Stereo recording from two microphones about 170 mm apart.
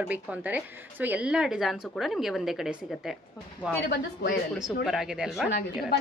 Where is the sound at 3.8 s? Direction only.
75° left (ahead or behind).